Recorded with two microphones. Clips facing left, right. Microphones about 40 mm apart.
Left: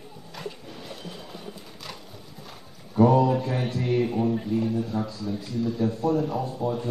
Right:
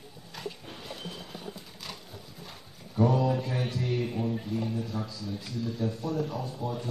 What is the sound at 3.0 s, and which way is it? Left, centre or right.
Mantra, centre.